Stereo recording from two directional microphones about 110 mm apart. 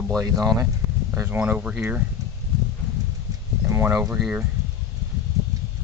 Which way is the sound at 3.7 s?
20° right (ahead or behind).